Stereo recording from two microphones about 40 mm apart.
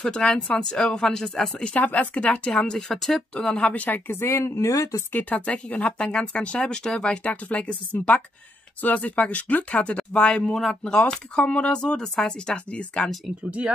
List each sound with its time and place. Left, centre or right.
0.0 s speech: left
1.8 s speech: left
2.5 s speech: left
2.9 s speech: centre
3.3 s speech: left
3.7 s a woman's voice: left
4.1 s speech: left
5.3 s speech: left
11.4 s speech: left
11.7 s speech: left
13.4 s speech: right